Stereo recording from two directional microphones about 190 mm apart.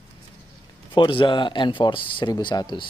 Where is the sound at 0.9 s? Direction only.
25° left (ahead or behind).